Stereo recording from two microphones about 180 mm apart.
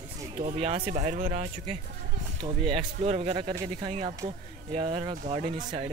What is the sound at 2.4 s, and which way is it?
Speech, 30° right (ahead or behind).